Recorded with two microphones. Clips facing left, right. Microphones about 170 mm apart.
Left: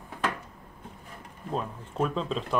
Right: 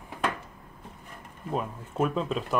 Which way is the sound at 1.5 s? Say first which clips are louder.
Right 1 dB; 5° right (ahead or behind).